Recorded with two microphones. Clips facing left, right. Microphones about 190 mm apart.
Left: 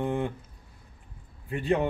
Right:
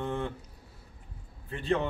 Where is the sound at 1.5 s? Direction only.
15° left (ahead or behind).